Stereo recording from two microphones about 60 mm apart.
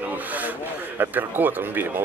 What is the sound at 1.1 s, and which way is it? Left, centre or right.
Speech, right.